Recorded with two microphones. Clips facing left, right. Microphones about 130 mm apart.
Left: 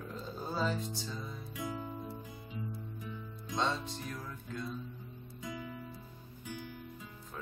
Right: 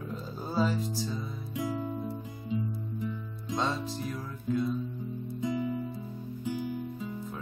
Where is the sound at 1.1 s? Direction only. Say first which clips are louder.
Right 6 dB; 15° right (ahead or behind).